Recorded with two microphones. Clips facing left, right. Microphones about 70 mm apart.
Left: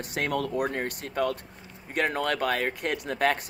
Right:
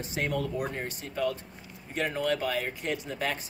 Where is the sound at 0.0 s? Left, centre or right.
Left.